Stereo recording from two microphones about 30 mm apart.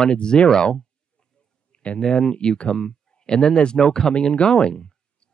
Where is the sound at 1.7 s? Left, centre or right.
Left.